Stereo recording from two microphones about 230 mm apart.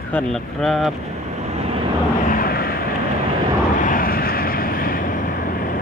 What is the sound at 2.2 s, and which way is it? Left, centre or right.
Vehicle, left.